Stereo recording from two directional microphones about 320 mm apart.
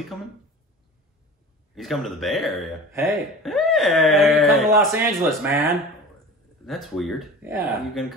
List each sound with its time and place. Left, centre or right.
1.8 s speech: centre